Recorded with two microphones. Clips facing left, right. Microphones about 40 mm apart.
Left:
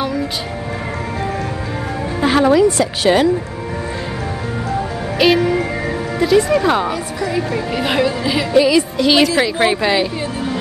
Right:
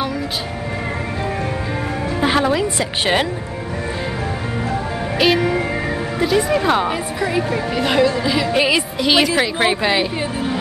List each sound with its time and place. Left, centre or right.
2.1 s music: centre
2.8 s speech: right
5.2 s speech: centre
6.9 s speech: centre
7.5 s speech: centre
8.5 s speech: right
8.9 s speech: centre